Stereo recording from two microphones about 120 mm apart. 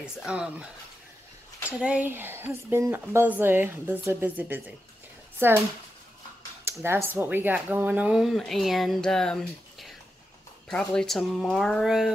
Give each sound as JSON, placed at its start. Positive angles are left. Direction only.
{"t": 0.2, "sound": "speech", "side_deg": -10}
{"t": 1.8, "sound": "speech", "side_deg": -10}
{"t": 6.6, "sound": "speech", "side_deg": -20}